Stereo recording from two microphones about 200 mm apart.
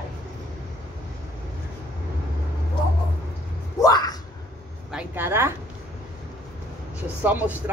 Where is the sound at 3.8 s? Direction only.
20° left (ahead or behind).